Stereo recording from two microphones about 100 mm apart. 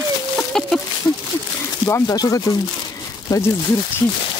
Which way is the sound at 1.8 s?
40° left (ahead or behind).